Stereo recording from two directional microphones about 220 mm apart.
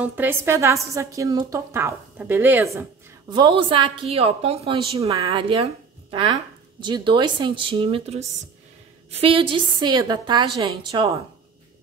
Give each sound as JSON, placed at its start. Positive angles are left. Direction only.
{"t": 0.0, "sound": "a woman's voice", "side_deg": -10}